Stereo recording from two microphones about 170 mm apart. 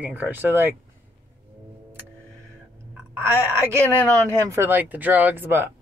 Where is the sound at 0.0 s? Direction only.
10° right (ahead or behind).